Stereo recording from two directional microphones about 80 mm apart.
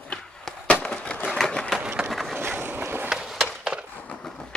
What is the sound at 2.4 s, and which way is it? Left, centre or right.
Boat, right.